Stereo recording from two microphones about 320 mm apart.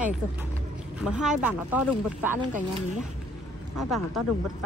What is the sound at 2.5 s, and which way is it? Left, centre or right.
Speech, right.